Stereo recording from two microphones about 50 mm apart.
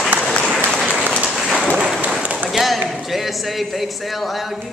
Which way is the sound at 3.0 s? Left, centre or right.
Centre.